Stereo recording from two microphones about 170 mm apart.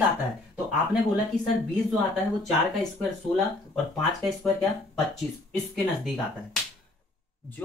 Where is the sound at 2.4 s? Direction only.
Centre (ahead or behind).